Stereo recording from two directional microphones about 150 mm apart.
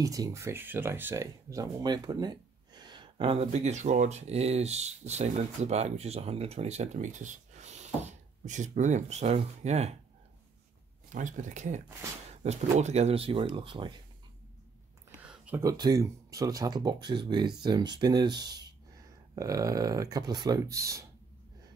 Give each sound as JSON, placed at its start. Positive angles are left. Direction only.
{"t": 0.0, "sound": "speech", "side_deg": -25}
{"t": 11.1, "sound": "speech", "side_deg": -55}
{"t": 15.2, "sound": "a sound", "side_deg": -10}
{"t": 15.6, "sound": "speech", "side_deg": -25}